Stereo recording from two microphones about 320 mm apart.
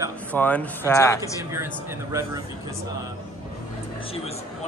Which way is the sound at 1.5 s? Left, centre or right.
Centre.